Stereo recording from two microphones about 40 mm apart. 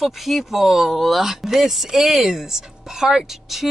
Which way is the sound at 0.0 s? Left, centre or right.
Centre.